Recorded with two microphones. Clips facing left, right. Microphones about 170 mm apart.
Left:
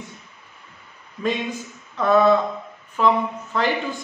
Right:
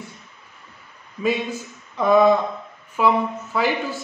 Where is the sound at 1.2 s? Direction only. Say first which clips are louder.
Right 2 dB; 10° right (ahead or behind).